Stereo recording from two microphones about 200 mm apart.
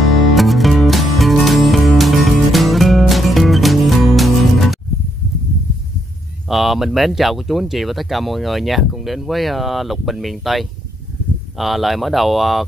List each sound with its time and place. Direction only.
0.3 s music: centre (ahead or behind)
6.5 s speech: centre (ahead or behind)